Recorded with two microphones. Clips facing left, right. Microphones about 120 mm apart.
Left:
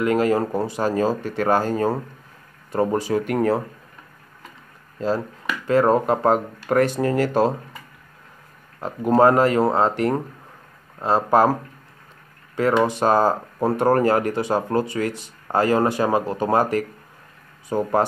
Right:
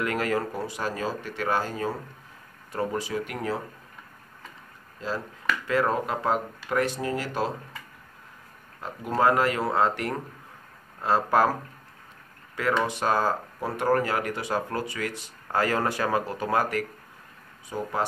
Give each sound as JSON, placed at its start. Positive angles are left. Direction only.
{"t": 0.0, "sound": "speech", "side_deg": 25}
{"t": 5.7, "sound": "speech", "side_deg": 35}
{"t": 8.8, "sound": "speech", "side_deg": 35}
{"t": 12.8, "sound": "speech", "side_deg": 35}
{"t": 17.6, "sound": "speech", "side_deg": 45}